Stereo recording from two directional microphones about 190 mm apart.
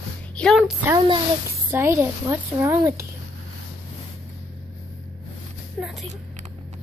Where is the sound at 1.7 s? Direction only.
15° right (ahead or behind).